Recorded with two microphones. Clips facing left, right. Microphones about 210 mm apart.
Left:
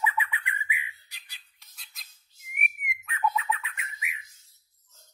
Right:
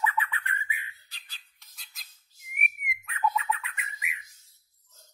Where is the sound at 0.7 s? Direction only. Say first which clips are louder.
Left 3 dB; 15° left (ahead or behind).